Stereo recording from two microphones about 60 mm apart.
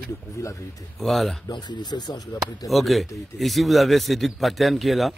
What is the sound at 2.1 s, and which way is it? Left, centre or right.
Speech, left.